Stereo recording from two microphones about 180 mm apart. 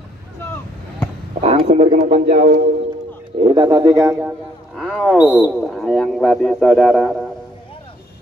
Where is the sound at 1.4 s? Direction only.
40° right (ahead or behind).